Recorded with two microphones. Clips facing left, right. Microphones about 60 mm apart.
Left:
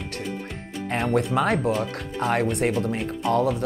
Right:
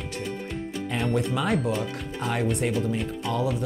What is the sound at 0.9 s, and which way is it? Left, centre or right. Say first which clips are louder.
Speech: left 4 dB; left.